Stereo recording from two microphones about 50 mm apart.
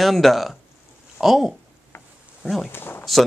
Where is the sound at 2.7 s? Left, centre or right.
Left.